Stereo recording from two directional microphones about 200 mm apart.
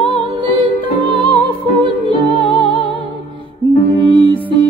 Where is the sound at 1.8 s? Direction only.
25° right (ahead or behind).